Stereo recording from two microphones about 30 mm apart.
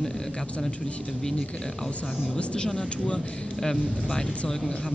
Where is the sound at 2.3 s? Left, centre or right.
Left.